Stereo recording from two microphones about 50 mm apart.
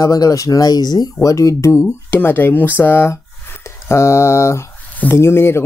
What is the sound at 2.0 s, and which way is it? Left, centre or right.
Speech, left.